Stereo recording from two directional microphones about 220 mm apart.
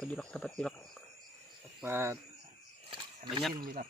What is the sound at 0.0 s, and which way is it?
Speech, 5° left (ahead or behind).